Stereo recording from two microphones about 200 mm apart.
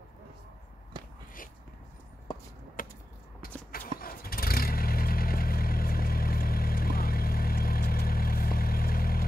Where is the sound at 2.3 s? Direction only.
25° left (ahead or behind).